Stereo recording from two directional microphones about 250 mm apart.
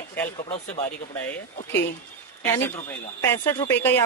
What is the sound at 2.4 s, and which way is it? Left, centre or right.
A woman's voice, centre.